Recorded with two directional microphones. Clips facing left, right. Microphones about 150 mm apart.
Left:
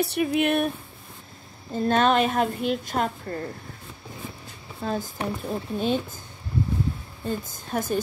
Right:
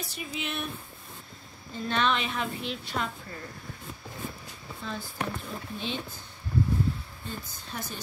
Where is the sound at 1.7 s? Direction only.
45° left (ahead or behind).